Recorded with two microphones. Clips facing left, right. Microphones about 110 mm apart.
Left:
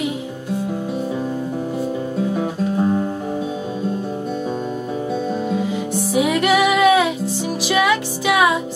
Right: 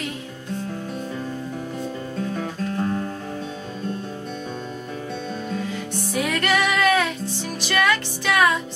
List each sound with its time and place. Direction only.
2.1 s guitar: 15° left (ahead or behind)
5.5 s music: 10° left (ahead or behind)